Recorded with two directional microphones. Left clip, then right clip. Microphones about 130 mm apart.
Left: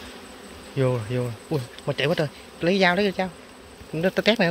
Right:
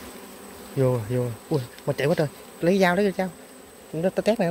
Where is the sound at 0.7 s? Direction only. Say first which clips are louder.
Right 1 dB; 15° right (ahead or behind).